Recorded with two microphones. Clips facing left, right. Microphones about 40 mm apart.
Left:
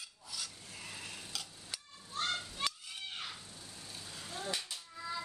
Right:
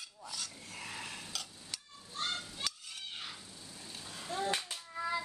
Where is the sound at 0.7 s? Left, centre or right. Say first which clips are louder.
Right 3 dB; right.